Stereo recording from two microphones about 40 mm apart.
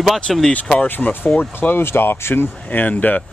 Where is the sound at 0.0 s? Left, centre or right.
Centre.